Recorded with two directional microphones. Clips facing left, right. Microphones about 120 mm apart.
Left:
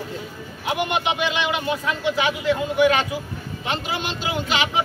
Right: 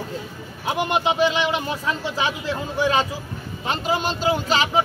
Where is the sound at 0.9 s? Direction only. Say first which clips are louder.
Right 3 dB; 35° right (ahead or behind).